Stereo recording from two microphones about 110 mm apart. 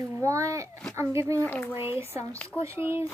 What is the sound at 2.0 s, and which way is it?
A child's voice, 25° right (ahead or behind).